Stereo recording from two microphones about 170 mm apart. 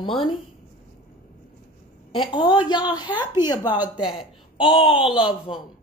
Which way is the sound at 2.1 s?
30° left (ahead or behind).